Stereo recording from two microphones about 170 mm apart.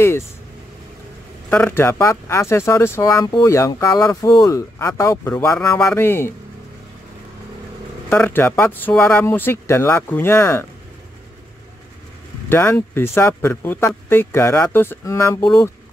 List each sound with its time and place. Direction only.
1.5 s speech: 10° left (ahead or behind)
8.1 s speech: 10° left (ahead or behind)
12.4 s speech: 15° left (ahead or behind)